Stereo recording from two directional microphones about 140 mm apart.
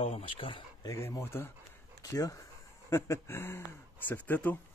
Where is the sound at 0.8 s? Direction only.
25° left (ahead or behind).